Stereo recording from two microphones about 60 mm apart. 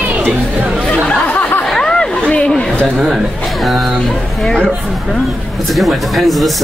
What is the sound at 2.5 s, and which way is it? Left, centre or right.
Speech, centre.